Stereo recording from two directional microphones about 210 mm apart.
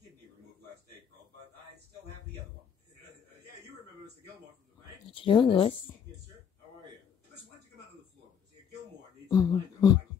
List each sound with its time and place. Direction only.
5.1 s speech: 25° left (ahead or behind)
9.3 s speech: 15° left (ahead or behind)